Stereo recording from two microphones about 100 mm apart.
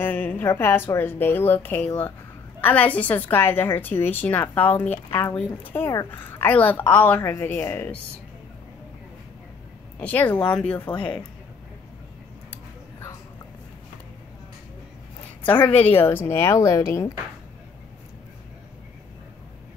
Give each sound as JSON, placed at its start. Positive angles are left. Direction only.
{"t": 0.0, "sound": "a woman's voice", "side_deg": 20}
{"t": 9.9, "sound": "speech", "side_deg": 15}
{"t": 15.4, "sound": "a woman's voice", "side_deg": 20}